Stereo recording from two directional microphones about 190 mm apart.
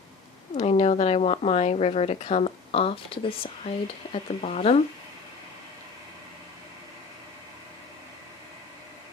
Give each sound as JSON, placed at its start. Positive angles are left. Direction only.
{"t": 0.6, "sound": "a woman's voice", "side_deg": 35}